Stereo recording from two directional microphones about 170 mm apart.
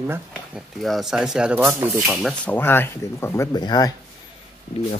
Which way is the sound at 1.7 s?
15° right (ahead or behind).